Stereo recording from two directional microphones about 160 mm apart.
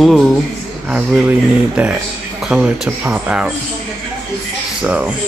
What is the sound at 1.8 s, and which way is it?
Speech, 5° right (ahead or behind).